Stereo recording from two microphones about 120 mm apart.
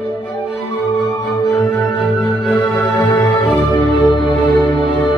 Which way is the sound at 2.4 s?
15° left (ahead or behind).